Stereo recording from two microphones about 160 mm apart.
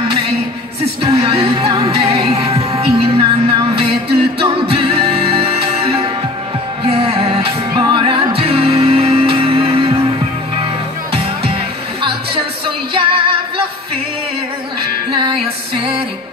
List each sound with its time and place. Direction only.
1.0 s music: 40° right (ahead or behind)
13.0 s music: 35° right (ahead or behind)
15.0 s music: 30° right (ahead or behind)